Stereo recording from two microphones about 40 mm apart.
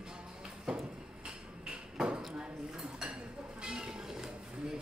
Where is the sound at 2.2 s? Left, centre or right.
Centre.